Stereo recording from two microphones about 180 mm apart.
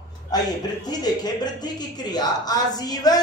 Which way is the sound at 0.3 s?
20° left (ahead or behind).